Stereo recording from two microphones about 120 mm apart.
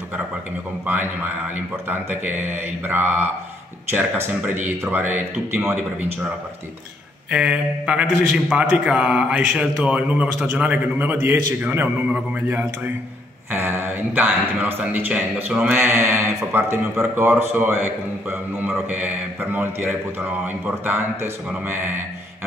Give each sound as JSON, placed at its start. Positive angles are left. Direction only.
{"t": 1.9, "sound": "a man's voice", "side_deg": -15}
{"t": 7.2, "sound": "a man's voice", "side_deg": -10}